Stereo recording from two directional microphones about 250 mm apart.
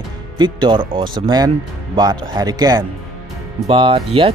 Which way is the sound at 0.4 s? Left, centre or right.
Centre.